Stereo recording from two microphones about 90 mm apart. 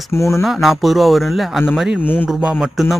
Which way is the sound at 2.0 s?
20° left (ahead or behind).